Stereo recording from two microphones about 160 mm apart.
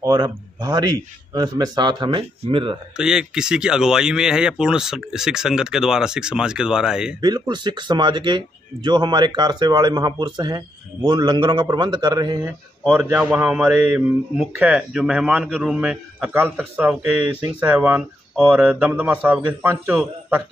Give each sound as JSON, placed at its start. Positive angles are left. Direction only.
{"t": 0.0, "sound": "speech", "side_deg": -25}
{"t": 3.0, "sound": "speech", "side_deg": -5}
{"t": 7.2, "sound": "speech", "side_deg": -25}
{"t": 12.4, "sound": "speech", "side_deg": -10}